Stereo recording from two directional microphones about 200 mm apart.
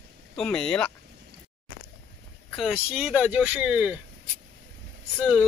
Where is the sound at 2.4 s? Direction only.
Centre (ahead or behind).